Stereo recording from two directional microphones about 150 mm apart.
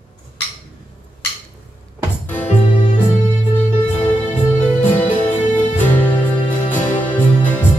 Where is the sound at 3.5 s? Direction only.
10° left (ahead or behind).